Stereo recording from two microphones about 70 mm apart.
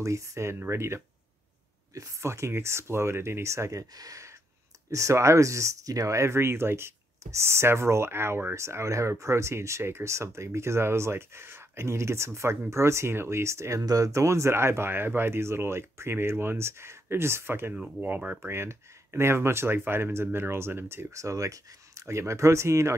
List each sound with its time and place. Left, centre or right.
0.0 s speech: right
3.9 s speech: right
4.9 s speech: right
13.8 s speech: right
18.4 s speech: right